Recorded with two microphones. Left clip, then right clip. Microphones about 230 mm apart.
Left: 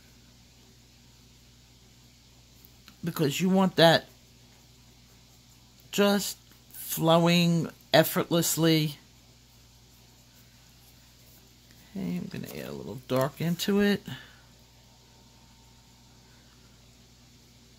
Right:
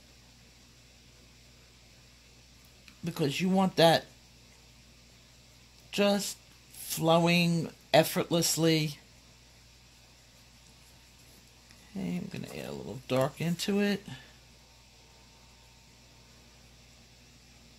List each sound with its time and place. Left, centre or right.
3.0 s speech: centre
5.9 s speech: centre
11.9 s speech: centre